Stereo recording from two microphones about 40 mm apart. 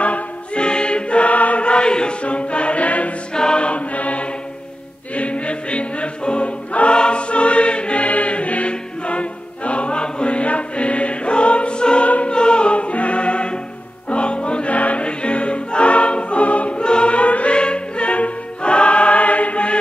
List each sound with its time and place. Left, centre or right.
0.0 s choir: left
3.3 s choir: left
12.3 s music: left